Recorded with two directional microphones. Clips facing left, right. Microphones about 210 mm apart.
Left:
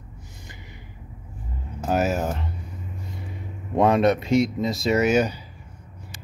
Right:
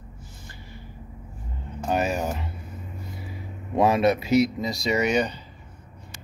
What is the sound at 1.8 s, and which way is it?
Music, 5° left (ahead or behind).